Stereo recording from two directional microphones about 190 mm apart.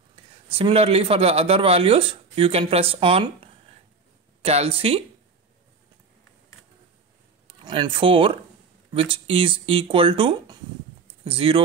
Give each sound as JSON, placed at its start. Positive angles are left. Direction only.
{"t": 0.1, "sound": "a man's voice", "side_deg": -30}
{"t": 4.4, "sound": "speech", "side_deg": -30}
{"t": 7.4, "sound": "speech", "side_deg": -25}